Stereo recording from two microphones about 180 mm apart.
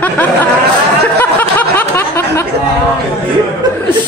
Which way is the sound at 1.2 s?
10° left (ahead or behind).